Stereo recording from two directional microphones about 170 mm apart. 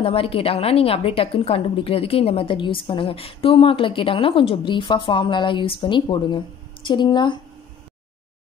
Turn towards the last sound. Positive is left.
turn(degrees=25)  # may be behind; listen again after turning